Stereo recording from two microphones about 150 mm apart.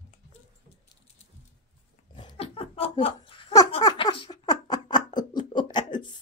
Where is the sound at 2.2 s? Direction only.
40° left (ahead or behind).